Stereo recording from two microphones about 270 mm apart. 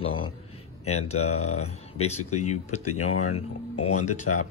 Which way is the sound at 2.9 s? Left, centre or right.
Left.